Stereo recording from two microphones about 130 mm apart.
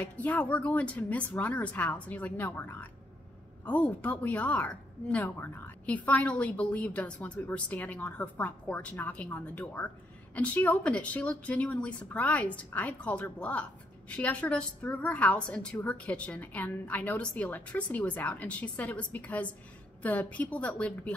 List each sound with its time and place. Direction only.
0.0 s a woman's voice: 10° left (ahead or behind)